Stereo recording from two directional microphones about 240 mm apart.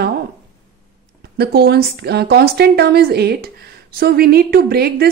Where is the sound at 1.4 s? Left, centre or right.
Right.